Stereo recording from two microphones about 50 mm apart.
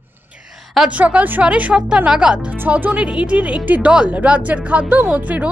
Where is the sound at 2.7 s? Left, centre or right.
Right.